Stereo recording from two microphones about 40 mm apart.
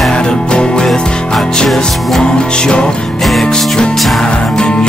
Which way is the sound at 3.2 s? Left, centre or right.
Centre.